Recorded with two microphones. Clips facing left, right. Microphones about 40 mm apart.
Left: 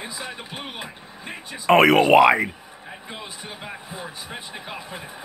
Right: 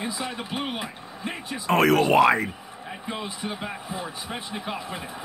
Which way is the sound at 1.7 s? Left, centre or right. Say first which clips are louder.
Left 5 dB; left.